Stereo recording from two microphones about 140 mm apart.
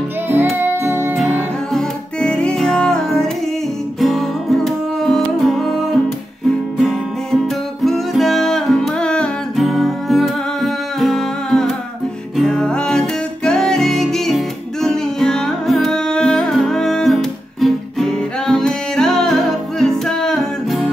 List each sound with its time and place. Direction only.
0.6 s music: 15° right (ahead or behind)
1.7 s music: 5° left (ahead or behind)